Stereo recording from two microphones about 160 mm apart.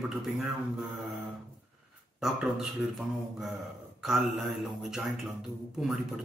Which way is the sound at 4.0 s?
5° right (ahead or behind).